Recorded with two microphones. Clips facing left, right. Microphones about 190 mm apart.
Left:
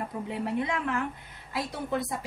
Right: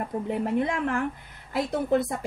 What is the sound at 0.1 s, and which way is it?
A woman's voice, 45° right (ahead or behind).